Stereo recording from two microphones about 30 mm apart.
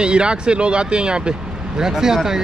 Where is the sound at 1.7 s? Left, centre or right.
Centre.